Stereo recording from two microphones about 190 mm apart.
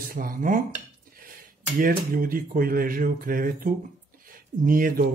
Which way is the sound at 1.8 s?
45° right (ahead or behind).